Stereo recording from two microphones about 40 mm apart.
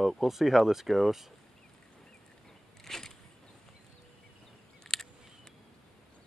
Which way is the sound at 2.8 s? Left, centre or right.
Centre.